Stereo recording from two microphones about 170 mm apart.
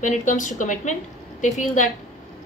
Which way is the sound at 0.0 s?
50° left (ahead or behind).